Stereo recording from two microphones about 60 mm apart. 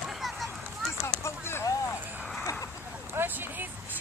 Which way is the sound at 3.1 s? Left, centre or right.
Right.